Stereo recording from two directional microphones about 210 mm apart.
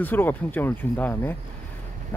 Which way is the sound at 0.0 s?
10° left (ahead or behind).